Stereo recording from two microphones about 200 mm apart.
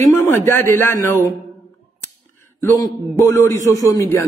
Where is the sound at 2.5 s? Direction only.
15° left (ahead or behind).